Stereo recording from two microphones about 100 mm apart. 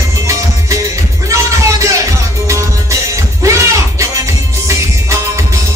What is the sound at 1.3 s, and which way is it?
Music, 30° right (ahead or behind).